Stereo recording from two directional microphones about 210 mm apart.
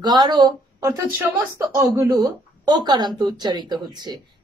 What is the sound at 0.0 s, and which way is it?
A woman's voice, 20° right (ahead or behind).